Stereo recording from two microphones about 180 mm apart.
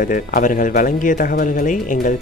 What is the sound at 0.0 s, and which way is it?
Speech, 50° left (ahead or behind).